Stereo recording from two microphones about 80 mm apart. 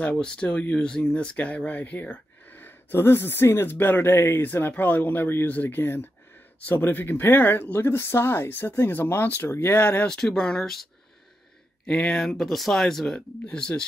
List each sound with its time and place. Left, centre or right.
0.0 s speech: centre
10.0 s speech: centre